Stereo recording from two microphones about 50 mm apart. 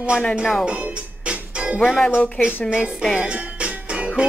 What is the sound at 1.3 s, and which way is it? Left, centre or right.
Music, right.